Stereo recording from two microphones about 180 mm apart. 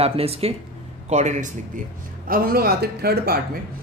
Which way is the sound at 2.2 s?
55° right (ahead or behind).